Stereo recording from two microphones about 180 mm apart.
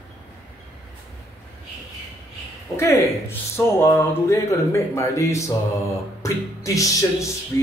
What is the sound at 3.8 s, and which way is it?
Speech, 15° left (ahead or behind).